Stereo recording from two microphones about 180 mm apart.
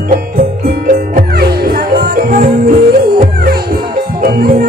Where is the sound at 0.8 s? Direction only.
55° right (ahead or behind).